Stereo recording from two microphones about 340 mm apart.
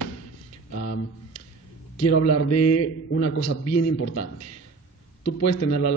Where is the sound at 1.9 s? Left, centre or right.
Left.